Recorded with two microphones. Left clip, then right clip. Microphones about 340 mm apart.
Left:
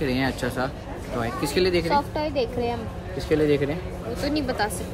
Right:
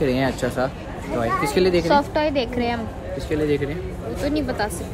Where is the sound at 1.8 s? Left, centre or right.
Right.